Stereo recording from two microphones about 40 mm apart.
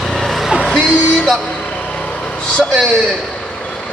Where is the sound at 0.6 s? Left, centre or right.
Left.